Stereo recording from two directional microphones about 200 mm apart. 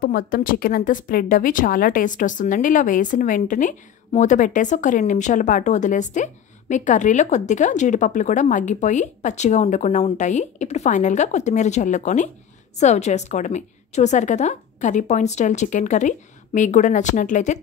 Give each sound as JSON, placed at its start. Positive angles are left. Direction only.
{"t": 0.0, "sound": "a woman's voice", "side_deg": 45}